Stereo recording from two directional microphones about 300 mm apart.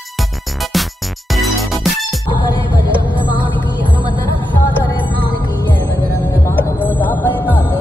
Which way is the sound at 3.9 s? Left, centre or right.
Centre.